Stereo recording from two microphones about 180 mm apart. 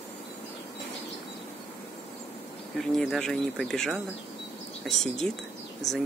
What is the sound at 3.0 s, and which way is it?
Speech, centre (ahead or behind).